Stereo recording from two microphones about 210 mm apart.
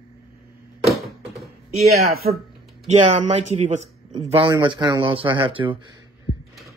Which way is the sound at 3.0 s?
30° right (ahead or behind).